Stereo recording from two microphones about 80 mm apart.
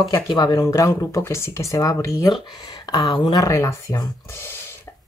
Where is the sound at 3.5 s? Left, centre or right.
Left.